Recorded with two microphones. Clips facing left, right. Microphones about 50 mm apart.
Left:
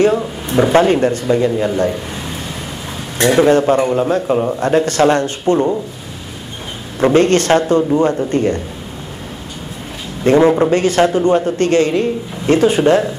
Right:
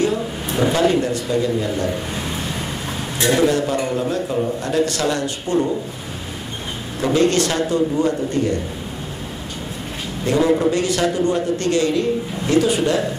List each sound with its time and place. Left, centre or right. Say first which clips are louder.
0.0 s a man's voice: left 6 dB; left
3.4 s a man's voice: left 7 dB; left
7.0 s a man's voice: left 5 dB; left
10.2 s a man's voice: left 6 dB; left